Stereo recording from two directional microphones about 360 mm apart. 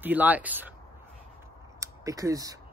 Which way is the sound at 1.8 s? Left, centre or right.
Centre.